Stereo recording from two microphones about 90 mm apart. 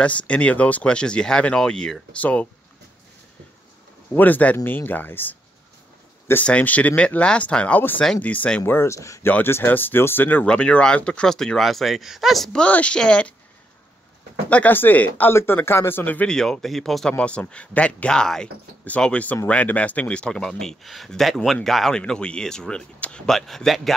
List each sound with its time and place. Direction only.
0.0 s speech: 15° left (ahead or behind)
4.1 s speech: 20° left (ahead or behind)
6.4 s speech: 15° left (ahead or behind); by 12.4 s centre (ahead or behind)
12.5 s speech: 15° left (ahead or behind)
14.5 s speech: 20° left (ahead or behind)
16.3 s speech: 5° left (ahead or behind)